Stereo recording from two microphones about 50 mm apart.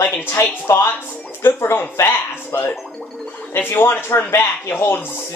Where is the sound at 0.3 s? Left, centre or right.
Left.